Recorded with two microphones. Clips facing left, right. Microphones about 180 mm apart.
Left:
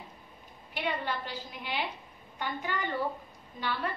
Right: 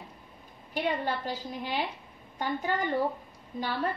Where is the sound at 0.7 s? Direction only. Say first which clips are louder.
Right 4 dB; 40° right (ahead or behind).